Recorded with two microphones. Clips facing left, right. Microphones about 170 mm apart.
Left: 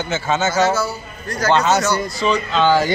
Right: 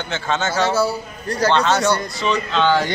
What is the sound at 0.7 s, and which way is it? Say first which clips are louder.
Speech: right 3 dB; 30° right (ahead or behind).